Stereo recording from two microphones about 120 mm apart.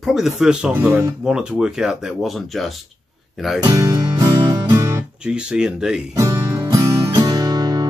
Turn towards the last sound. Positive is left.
turn(degrees=-30)  # may be behind; listen again after turning